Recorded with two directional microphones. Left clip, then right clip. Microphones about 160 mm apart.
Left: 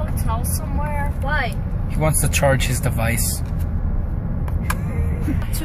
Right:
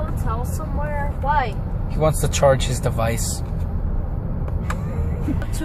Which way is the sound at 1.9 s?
Centre (ahead or behind).